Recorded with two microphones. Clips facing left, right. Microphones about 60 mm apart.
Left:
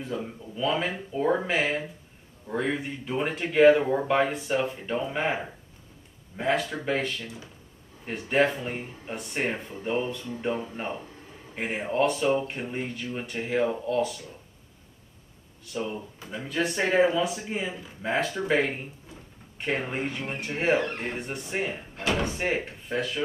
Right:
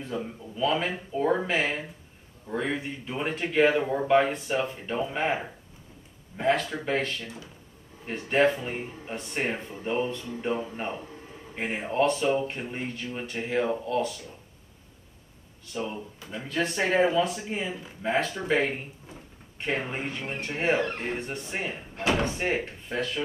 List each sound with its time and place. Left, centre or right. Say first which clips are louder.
0.0 s speech: even; centre
8.0 s speech: right 1 dB; centre
11.5 s speech: even; centre
15.7 s speech: left 1 dB; centre
21.9 s speech: right 2 dB; centre
22.2 s speech: even; centre